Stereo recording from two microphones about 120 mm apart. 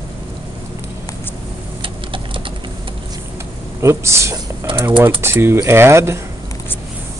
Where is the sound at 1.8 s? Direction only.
45° right (ahead or behind).